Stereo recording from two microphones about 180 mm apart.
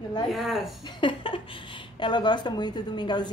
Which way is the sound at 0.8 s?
25° left (ahead or behind).